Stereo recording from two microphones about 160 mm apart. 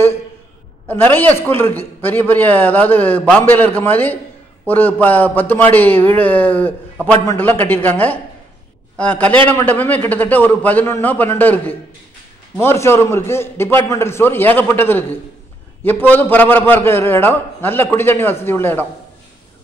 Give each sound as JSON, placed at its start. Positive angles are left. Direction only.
{"t": 0.8, "sound": "a man's voice", "side_deg": 10}